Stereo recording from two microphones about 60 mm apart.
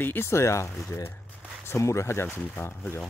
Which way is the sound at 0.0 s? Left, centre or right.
Left.